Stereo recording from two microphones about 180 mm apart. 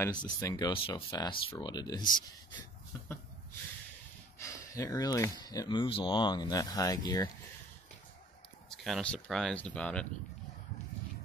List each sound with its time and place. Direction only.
0.0 s speech: 20° left (ahead or behind)
4.4 s speech: 20° left (ahead or behind)
8.6 s speech: centre (ahead or behind)